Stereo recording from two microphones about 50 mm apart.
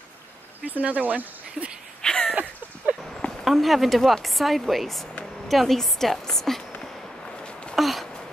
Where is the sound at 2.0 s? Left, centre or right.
Centre.